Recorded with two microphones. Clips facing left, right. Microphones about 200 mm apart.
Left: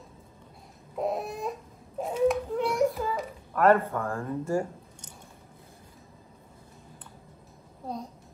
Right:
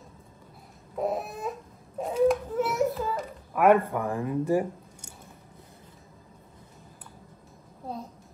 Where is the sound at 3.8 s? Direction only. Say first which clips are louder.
Right 2 dB; 15° right (ahead or behind).